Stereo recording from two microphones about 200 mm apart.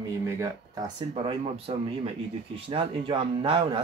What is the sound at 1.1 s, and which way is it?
Speech, 30° right (ahead or behind).